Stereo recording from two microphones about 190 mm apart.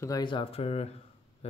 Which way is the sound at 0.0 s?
20° left (ahead or behind).